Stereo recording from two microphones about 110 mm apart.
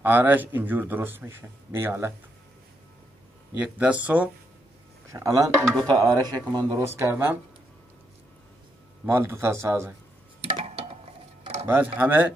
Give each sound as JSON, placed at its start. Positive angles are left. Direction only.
{"t": 0.0, "sound": "speech", "side_deg": -15}
{"t": 3.5, "sound": "speech", "side_deg": -10}
{"t": 5.1, "sound": "speech", "side_deg": -30}
{"t": 9.0, "sound": "speech", "side_deg": -20}
{"t": 10.4, "sound": "a sound", "side_deg": -60}
{"t": 11.6, "sound": "speech", "side_deg": -15}